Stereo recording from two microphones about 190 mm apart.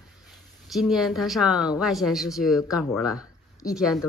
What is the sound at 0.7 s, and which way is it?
Speech, centre (ahead or behind).